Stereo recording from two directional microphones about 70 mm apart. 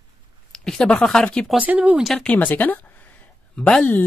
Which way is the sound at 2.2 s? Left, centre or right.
Centre.